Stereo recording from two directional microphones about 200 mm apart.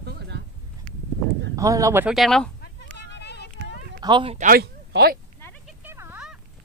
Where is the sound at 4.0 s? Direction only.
25° right (ahead or behind).